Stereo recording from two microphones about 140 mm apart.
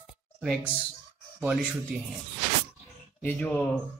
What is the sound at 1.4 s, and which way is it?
Speech, 5° right (ahead or behind).